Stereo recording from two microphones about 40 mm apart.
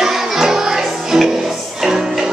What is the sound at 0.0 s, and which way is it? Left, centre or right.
Music, centre.